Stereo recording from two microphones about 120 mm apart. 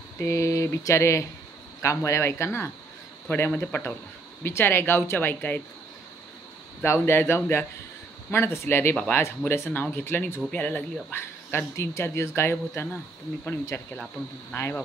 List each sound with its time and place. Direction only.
0.2 s speech: 25° left (ahead or behind)
6.8 s speech: 20° left (ahead or behind)
8.9 s speech: 10° left (ahead or behind)
9.2 s speech: 20° left (ahead or behind)